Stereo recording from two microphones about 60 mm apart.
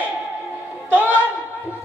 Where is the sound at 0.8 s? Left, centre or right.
Right.